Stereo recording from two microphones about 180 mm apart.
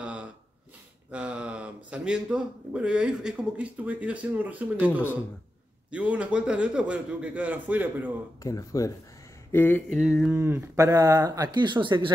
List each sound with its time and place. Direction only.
0.0 s a sound: 5° right (ahead or behind)
1.1 s speech: 5° right (ahead or behind)
8.4 s speech: 20° left (ahead or behind)
9.8 s mantra: centre (ahead or behind)
10.3 s speech: 10° right (ahead or behind)